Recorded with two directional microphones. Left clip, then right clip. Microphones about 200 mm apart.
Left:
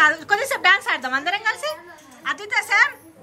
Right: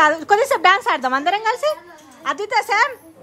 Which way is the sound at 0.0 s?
40° right (ahead or behind).